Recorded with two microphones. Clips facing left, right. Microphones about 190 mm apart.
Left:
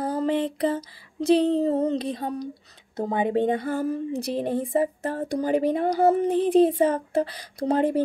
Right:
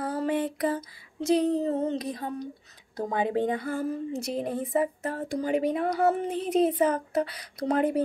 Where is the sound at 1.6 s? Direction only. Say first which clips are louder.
Left 4 dB; 35° left (ahead or behind).